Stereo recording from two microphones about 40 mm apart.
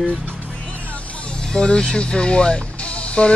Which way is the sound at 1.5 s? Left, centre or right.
Centre.